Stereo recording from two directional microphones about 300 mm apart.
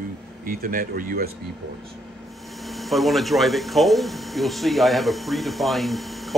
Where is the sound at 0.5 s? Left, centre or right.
Right.